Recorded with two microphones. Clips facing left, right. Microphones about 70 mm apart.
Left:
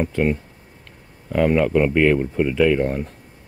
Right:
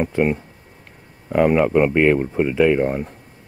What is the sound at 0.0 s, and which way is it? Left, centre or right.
Speech, centre.